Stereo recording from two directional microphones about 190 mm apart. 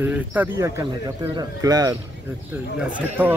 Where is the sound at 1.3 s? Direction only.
20° right (ahead or behind).